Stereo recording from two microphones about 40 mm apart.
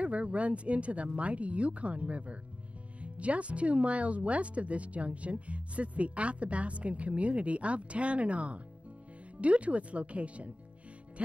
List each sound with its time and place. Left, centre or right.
0.0 s speech: right